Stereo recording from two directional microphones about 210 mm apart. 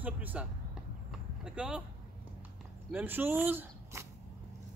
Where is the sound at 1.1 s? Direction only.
5° right (ahead or behind).